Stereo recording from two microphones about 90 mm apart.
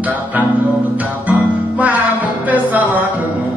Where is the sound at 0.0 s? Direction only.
20° right (ahead or behind).